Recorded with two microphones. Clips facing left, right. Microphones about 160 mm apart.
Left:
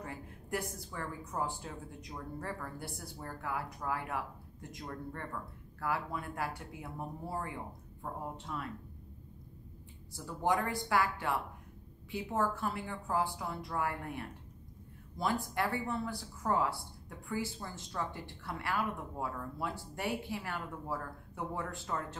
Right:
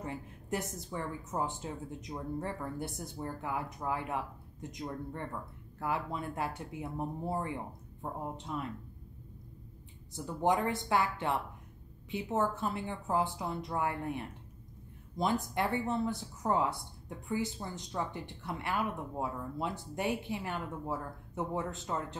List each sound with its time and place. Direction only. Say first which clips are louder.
0.0 s a woman's voice: right 4 dB; 20° right (ahead or behind)
10.1 s a woman's voice: right 2 dB; 20° right (ahead or behind)